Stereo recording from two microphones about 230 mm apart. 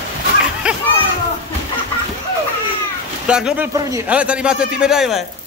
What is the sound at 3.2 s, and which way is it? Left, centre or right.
A man's voice, centre.